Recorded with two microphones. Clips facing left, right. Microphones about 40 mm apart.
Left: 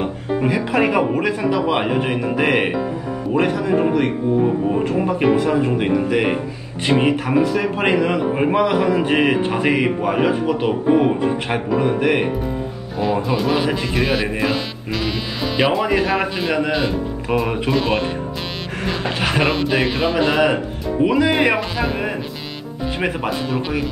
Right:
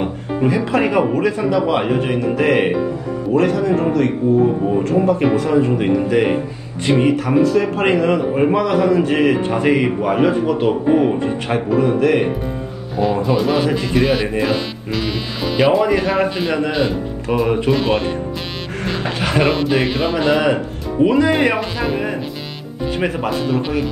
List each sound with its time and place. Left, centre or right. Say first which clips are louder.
0.5 s speech: right 1 dB; centre
5.9 s speech: right 2 dB; centre
6.9 s speech: right 2 dB; left; by 11.3 s centre
11.4 s speech: right 2 dB; left
13.0 s speech: right 3 dB; centre